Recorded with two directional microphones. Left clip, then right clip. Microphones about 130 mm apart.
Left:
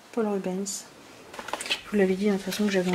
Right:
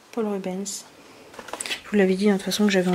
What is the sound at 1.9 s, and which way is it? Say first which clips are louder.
Speech: right 5 dB; 45° right (ahead or behind).